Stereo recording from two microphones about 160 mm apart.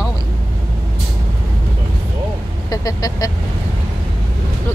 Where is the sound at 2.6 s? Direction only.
20° left (ahead or behind).